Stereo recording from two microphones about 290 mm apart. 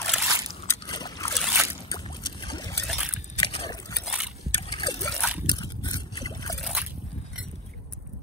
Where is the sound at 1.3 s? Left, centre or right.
Centre.